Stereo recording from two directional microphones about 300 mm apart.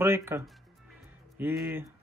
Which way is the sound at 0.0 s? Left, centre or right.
Centre.